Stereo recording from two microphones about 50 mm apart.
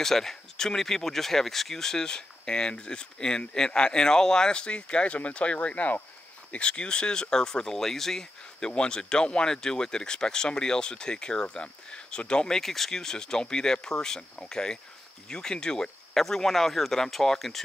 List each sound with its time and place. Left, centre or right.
0.0 s speech: centre; by 6.0 s left
6.5 s speech: left